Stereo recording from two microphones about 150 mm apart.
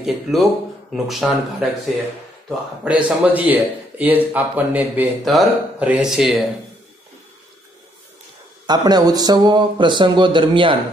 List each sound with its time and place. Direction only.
0.0 s speech: centre (ahead or behind)
2.8 s speech: 10° right (ahead or behind)
5.2 s speech: centre (ahead or behind)
8.6 s speech: 25° right (ahead or behind)